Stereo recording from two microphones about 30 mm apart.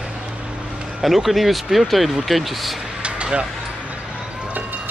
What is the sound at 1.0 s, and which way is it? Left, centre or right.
Speech, centre.